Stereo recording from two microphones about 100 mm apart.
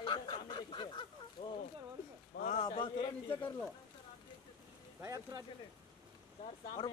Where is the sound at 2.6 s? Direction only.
55° left (ahead or behind).